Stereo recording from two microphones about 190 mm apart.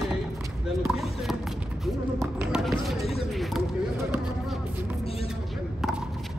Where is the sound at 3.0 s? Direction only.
30° left (ahead or behind).